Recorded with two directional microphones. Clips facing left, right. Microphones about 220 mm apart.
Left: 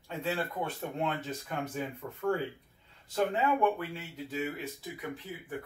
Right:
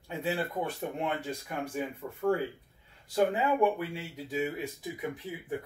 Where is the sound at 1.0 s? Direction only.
10° right (ahead or behind).